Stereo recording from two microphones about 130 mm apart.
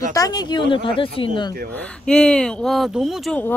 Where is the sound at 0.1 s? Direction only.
30° left (ahead or behind).